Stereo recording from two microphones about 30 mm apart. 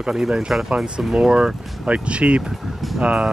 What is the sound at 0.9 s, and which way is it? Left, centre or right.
Speech, right.